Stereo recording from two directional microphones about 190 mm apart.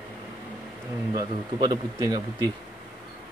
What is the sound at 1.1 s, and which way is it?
Speech, 20° right (ahead or behind).